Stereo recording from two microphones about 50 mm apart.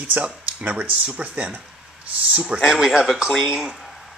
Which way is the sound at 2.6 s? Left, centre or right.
Centre.